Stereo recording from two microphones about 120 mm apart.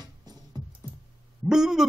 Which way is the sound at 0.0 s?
35° right (ahead or behind).